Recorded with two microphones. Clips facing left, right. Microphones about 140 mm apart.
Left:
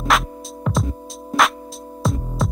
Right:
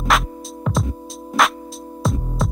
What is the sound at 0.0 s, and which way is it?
Music, centre (ahead or behind).